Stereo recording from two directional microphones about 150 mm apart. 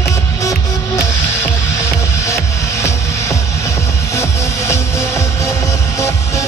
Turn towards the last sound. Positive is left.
turn(degrees=20)  # may be behind; listen again after turning